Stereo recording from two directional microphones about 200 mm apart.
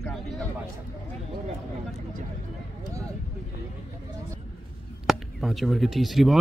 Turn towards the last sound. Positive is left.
turn(degrees=0)  # may be behind; listen again after turning